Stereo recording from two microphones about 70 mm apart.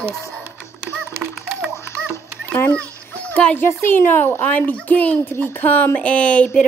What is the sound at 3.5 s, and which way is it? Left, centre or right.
A woman's voice, left.